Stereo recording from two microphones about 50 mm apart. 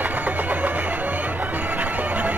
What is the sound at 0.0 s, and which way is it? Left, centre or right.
Music, right.